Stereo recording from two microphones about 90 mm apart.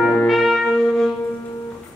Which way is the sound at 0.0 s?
15° left (ahead or behind).